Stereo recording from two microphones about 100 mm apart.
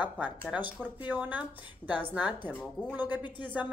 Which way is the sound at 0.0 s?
15° right (ahead or behind).